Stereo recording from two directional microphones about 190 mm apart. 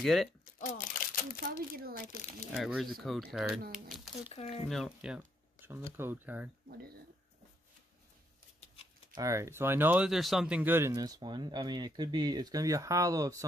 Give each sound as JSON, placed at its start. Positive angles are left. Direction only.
{"t": 0.0, "sound": "speech", "side_deg": 0}
{"t": 0.6, "sound": "a sound", "side_deg": 45}
{"t": 2.5, "sound": "speech", "side_deg": 0}
{"t": 9.1, "sound": "speech", "side_deg": -15}